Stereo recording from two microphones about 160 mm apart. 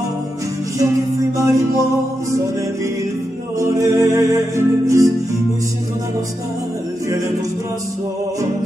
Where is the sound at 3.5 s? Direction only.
20° right (ahead or behind).